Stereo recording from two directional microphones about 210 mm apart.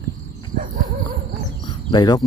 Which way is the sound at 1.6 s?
20° left (ahead or behind).